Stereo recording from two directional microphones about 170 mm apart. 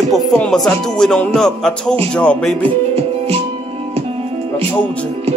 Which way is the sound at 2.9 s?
35° right (ahead or behind).